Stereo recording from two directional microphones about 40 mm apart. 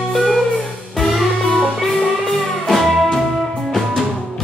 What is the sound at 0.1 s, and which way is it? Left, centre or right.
Music, centre.